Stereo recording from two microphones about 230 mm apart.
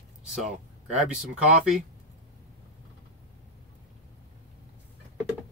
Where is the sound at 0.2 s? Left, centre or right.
Centre.